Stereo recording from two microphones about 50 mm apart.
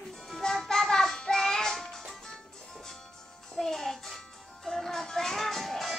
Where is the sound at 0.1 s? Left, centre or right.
Centre.